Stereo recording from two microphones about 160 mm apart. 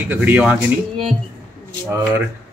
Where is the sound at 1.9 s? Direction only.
15° right (ahead or behind).